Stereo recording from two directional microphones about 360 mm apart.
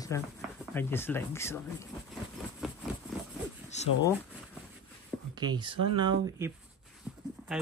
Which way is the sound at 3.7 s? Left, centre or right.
Centre.